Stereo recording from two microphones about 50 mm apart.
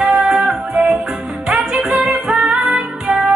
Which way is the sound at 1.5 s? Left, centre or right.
Centre.